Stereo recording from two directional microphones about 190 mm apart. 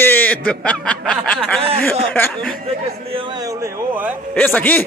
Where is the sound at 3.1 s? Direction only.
25° right (ahead or behind); by 4.2 s 10° right (ahead or behind).